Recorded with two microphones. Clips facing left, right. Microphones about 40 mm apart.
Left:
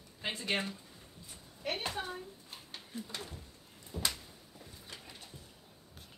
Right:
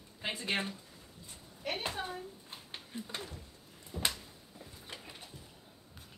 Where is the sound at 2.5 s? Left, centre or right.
Right.